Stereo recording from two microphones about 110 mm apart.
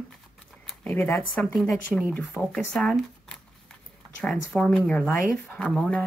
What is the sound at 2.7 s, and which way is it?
Speech, 5° left (ahead or behind).